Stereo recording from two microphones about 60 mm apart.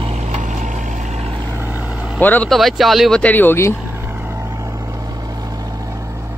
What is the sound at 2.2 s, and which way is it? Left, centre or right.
Speech, left.